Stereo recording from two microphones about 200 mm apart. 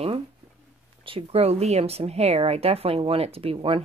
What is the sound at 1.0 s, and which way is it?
Speech, 30° right (ahead or behind).